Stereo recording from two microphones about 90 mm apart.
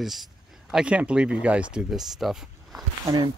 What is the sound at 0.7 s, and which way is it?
Speech, 15° right (ahead or behind).